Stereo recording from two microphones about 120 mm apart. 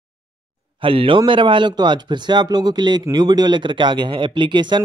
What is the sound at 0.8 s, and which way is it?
Speech, 50° right (ahead or behind).